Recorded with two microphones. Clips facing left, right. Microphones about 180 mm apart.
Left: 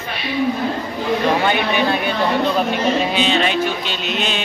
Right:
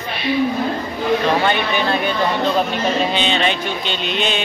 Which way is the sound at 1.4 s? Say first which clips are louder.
Left 1 dB; 10° left (ahead or behind).